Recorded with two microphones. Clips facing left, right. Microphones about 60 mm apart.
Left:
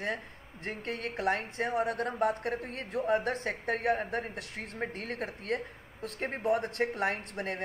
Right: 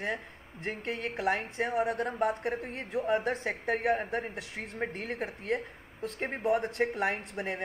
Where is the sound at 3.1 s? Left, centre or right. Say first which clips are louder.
Even; centre.